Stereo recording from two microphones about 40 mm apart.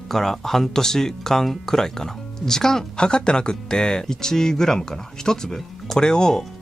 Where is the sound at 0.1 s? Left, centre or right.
Centre.